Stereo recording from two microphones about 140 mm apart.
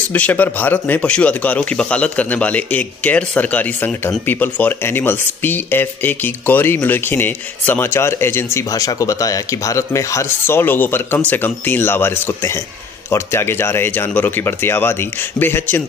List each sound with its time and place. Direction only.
0.1 s speech: 10° left (ahead or behind)